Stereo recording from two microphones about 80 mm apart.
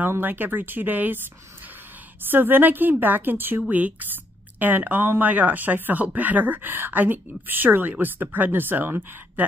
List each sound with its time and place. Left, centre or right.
0.0 s speech: right
2.3 s speech: right